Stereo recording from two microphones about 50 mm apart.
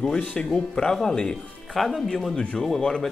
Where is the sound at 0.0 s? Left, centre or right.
Centre.